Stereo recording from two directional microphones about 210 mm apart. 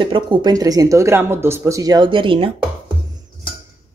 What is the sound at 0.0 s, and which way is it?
Speech, 25° right (ahead or behind).